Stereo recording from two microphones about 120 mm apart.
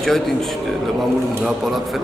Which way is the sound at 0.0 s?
5° left (ahead or behind).